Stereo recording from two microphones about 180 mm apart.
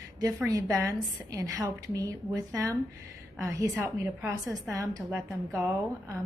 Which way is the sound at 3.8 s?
15° right (ahead or behind).